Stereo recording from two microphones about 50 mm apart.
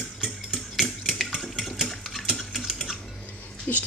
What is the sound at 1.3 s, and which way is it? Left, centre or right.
Stir, centre.